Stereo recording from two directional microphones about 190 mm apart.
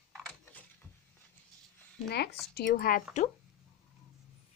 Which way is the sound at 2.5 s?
60° left (ahead or behind).